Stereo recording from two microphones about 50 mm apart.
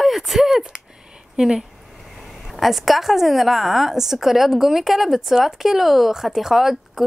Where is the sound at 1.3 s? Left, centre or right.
Centre.